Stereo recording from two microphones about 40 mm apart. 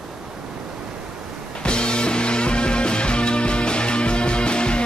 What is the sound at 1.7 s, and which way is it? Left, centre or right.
Music, left.